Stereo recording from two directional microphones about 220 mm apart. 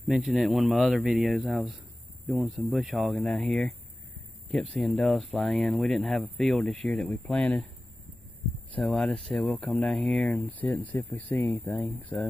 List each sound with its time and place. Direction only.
0.1 s speech: centre (ahead or behind)
8.7 s speech: centre (ahead or behind)